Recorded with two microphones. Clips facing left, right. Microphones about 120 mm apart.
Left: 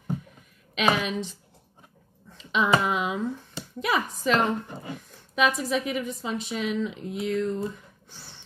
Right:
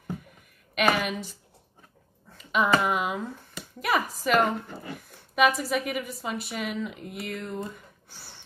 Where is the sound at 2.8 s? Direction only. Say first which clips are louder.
Even; 5° right (ahead or behind).